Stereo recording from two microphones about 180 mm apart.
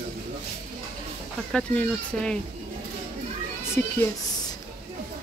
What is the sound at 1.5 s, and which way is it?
Speech, 5° left (ahead or behind).